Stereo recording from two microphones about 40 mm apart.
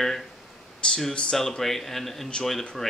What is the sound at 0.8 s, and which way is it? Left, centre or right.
Speech, left.